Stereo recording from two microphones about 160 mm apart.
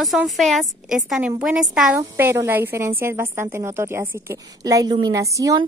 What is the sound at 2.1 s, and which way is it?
A woman's voice, 15° right (ahead or behind).